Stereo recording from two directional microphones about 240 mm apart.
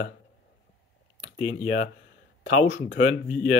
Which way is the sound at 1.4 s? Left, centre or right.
Left.